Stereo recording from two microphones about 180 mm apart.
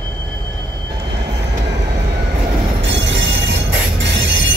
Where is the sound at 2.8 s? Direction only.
85° right.